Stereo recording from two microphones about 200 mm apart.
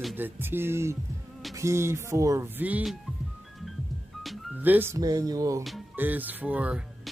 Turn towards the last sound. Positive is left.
turn(degrees=-5)  # may be behind; listen again after turning